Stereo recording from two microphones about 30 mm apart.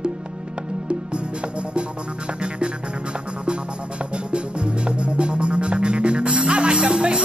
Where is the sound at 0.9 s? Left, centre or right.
Right.